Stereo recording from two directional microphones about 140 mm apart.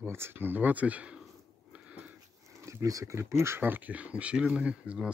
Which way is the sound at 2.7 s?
20° right (ahead or behind).